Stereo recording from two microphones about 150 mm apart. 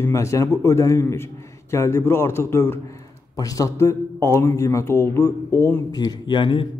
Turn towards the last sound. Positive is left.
turn(degrees=35)  # may be behind; listen again after turning